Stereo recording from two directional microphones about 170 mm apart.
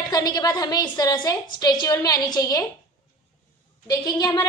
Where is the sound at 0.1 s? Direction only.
20° left (ahead or behind).